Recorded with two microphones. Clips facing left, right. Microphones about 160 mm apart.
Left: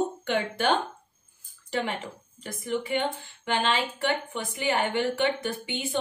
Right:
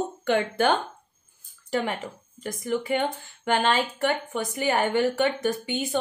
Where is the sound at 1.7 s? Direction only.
45° right (ahead or behind).